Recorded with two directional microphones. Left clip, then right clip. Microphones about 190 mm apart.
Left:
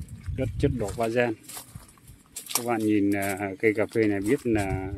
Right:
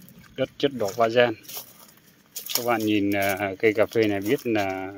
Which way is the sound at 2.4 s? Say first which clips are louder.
Right 2 dB; 55° right (ahead or behind).